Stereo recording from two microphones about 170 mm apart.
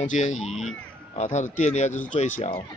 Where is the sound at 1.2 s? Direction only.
45° left (ahead or behind).